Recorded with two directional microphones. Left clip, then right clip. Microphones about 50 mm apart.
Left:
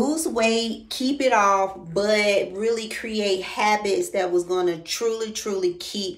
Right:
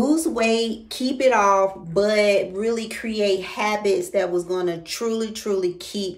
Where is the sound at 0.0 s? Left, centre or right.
Right.